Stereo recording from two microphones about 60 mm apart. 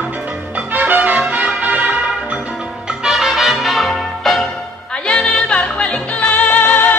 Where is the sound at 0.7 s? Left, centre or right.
Right.